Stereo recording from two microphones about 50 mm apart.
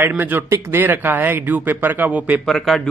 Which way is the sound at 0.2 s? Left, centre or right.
Right.